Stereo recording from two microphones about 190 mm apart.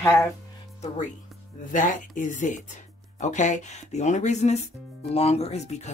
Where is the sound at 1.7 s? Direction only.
45° left (ahead or behind).